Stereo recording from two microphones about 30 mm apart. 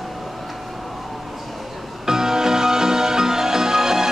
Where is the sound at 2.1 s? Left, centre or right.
Centre.